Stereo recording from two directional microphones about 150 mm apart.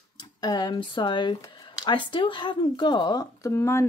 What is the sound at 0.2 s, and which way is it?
Speech, 30° left (ahead or behind).